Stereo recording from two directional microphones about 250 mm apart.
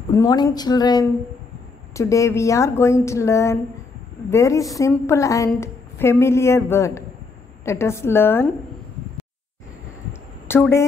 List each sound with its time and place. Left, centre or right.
0.1 s a woman's voice: centre
10.5 s a woman's voice: centre